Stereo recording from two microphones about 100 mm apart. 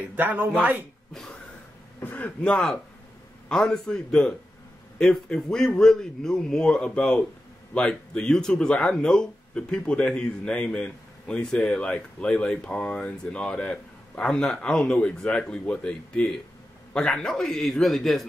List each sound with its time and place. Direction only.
0.1 s speech: 20° right (ahead or behind)
1.1 s speech: 5° left (ahead or behind)
2.0 s a man's voice: 20° left (ahead or behind); by 18.2 s centre (ahead or behind)